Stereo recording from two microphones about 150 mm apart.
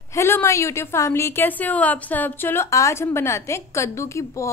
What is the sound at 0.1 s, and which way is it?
A woman's voice, 15° left (ahead or behind).